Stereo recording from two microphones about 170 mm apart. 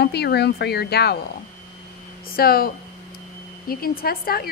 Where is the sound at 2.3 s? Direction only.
60° left (ahead or behind).